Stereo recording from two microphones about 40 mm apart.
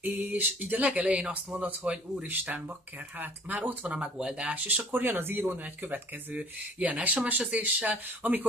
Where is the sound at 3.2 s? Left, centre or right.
Right.